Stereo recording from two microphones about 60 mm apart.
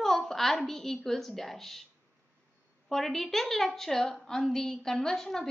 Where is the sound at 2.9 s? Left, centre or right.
Centre.